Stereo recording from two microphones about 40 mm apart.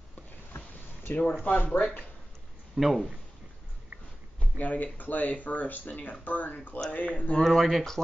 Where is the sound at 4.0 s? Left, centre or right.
Left.